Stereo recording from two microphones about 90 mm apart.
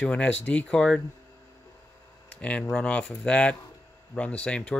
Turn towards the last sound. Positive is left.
turn(degrees=10)  # may be behind; listen again after turning